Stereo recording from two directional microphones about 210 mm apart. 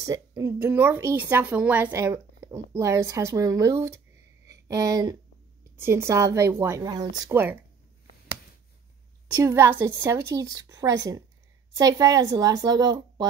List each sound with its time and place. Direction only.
0.0 s speech: 15° right (ahead or behind)
9.4 s speech: 10° right (ahead or behind)